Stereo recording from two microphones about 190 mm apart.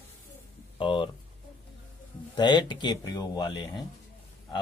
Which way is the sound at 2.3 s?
25° left (ahead or behind).